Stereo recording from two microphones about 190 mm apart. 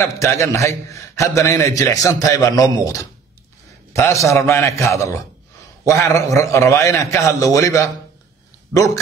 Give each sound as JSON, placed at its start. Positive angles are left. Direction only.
{"t": 0.0, "sound": "a man's voice", "side_deg": 15}
{"t": 4.0, "sound": "a man's voice", "side_deg": 15}